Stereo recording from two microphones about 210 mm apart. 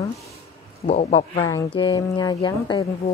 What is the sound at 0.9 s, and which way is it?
Speech, 30° left (ahead or behind).